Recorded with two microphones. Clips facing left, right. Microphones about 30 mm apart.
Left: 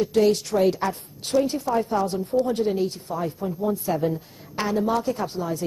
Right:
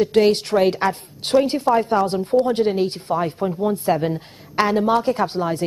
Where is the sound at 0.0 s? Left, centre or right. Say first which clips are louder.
Right 4 dB; right.